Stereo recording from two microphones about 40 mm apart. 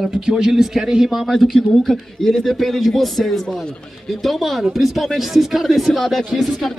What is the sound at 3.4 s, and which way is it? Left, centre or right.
Speech, left.